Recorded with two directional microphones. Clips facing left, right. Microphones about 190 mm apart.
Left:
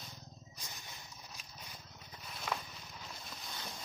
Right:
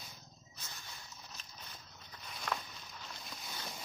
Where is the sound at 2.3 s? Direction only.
5° left (ahead or behind).